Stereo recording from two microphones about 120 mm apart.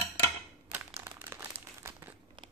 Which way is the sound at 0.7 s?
15° right (ahead or behind).